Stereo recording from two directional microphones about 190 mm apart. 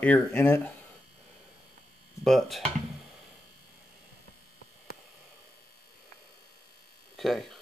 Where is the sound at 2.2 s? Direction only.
Centre (ahead or behind).